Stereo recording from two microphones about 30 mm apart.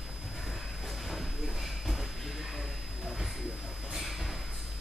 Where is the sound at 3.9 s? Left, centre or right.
Centre.